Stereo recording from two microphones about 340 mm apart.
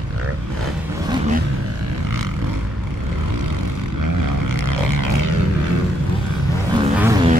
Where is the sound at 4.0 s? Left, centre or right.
Right.